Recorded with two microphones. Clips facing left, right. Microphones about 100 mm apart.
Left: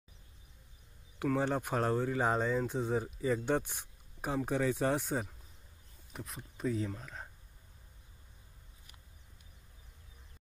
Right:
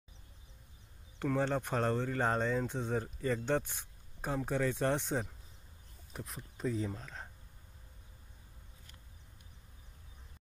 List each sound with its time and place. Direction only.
1.2 s speech: 10° left (ahead or behind)